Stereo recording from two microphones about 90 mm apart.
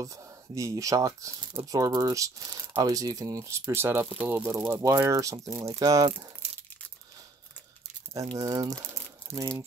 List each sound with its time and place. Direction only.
0.0 s speech: 40° right (ahead or behind)
8.4 s speech: 40° right (ahead or behind)